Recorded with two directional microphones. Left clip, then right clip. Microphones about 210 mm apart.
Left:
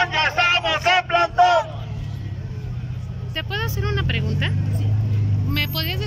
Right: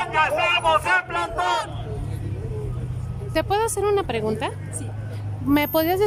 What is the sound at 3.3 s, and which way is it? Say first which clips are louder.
Speech: right 5 dB; 20° right (ahead or behind).